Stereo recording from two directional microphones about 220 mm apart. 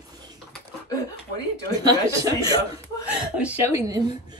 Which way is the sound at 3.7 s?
15° right (ahead or behind).